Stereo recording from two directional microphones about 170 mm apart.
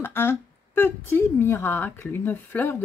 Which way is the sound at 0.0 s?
15° left (ahead or behind).